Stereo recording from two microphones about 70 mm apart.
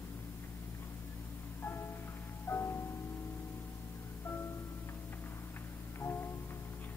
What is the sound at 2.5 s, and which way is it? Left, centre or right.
Music, left.